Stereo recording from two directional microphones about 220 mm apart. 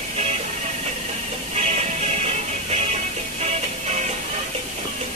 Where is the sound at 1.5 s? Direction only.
30° right (ahead or behind).